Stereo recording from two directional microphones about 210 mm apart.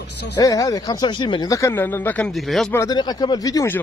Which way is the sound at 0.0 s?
55° left (ahead or behind).